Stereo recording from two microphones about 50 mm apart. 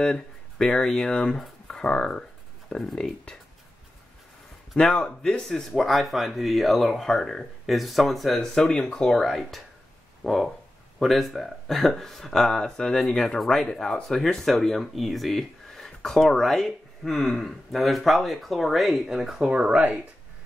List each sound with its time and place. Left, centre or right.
0.0 s speech: centre
2.9 s speech: centre
4.7 s speech: centre
8.4 s speech: centre
19.0 s speech: centre
19.5 s speech: right